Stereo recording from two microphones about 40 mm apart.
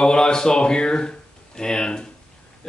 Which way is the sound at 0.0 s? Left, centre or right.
Centre.